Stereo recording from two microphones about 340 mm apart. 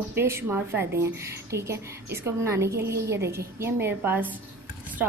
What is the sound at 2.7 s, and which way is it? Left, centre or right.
Speech, right.